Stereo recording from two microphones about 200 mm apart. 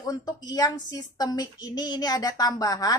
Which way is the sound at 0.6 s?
20° left (ahead or behind).